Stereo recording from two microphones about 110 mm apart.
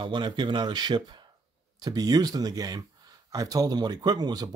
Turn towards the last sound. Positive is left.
turn(degrees=-40)  # may be behind; listen again after turning